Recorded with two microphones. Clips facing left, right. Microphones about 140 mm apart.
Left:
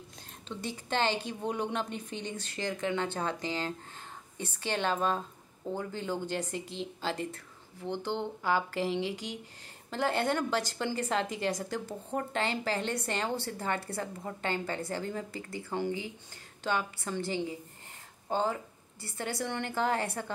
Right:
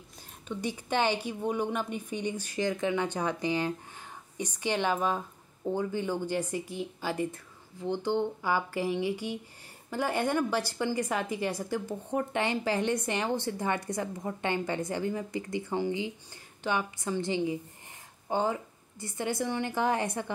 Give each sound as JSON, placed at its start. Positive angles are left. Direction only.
{"t": 0.5, "sound": "a woman's voice", "side_deg": -15}